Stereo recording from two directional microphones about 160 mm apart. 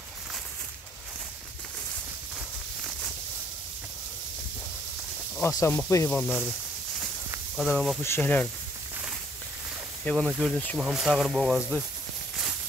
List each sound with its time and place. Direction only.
5.4 s speech: 15° left (ahead or behind)
7.5 s speech: 5° right (ahead or behind)
8.0 s speech: 15° left (ahead or behind)
10.0 s speech: centre (ahead or behind)